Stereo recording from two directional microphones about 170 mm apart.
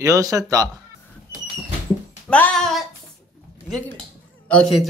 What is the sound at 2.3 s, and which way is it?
Speech, 5° left (ahead or behind).